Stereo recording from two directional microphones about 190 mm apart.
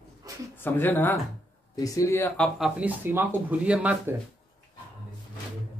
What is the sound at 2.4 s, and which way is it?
Speech, 5° right (ahead or behind).